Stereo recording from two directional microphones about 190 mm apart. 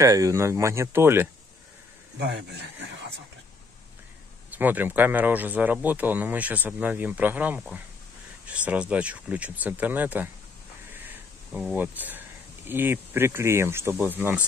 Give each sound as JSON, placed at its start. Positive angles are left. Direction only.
{"t": 0.0, "sound": "speech", "side_deg": -15}
{"t": 2.2, "sound": "speech", "side_deg": -65}
{"t": 4.5, "sound": "speech", "side_deg": -10}
{"t": 10.9, "sound": "a sound", "side_deg": -10}
{"t": 12.6, "sound": "speech", "side_deg": -10}